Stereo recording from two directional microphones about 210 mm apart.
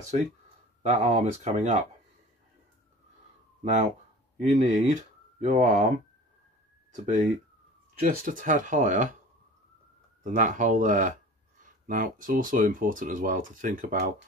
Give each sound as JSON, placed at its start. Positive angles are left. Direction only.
{"t": 0.8, "sound": "speech", "side_deg": -35}
{"t": 4.4, "sound": "speech", "side_deg": -30}
{"t": 10.2, "sound": "speech", "side_deg": -35}